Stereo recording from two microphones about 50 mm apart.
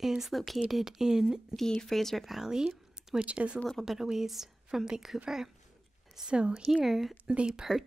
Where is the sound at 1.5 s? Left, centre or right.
Centre.